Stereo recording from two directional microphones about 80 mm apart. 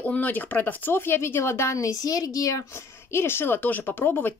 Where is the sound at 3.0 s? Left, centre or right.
Left.